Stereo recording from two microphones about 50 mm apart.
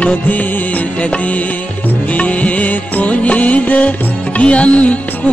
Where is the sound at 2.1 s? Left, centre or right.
Left.